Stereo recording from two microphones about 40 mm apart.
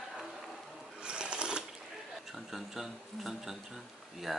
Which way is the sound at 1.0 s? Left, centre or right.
Right.